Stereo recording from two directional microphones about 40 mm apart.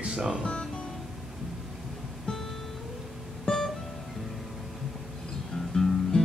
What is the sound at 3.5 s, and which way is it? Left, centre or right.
Music, left.